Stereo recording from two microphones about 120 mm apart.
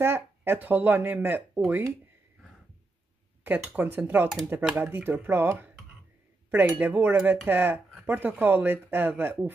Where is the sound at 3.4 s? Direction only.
15° right (ahead or behind).